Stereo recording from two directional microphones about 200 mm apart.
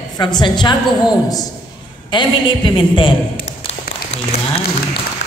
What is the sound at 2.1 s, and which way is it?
A woman's voice, 25° left (ahead or behind).